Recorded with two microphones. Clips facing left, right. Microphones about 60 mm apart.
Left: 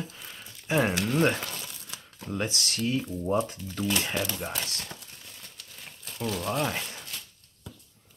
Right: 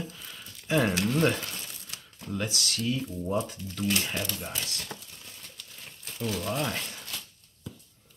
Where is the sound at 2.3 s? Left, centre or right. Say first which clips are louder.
Left 1 dB; left.